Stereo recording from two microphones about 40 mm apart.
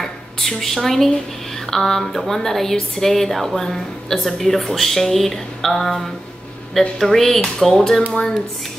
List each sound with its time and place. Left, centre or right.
0.0 s speech: centre